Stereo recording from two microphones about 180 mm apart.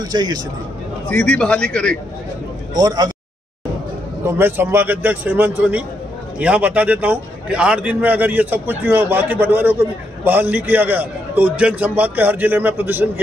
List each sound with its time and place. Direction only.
0.0 s speech: 20° right (ahead or behind)
1.0 s a man's voice: 5° left (ahead or behind)
2.7 s speech: 20° right (ahead or behind)
4.4 s a man's voice: 10° right (ahead or behind)